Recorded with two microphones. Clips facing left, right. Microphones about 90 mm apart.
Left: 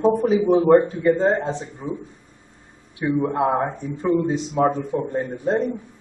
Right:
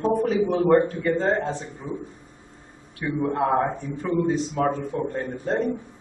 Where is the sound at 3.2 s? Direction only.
20° left (ahead or behind).